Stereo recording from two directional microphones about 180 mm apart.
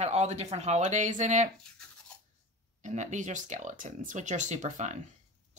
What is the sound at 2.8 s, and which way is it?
Speech, 40° right (ahead or behind).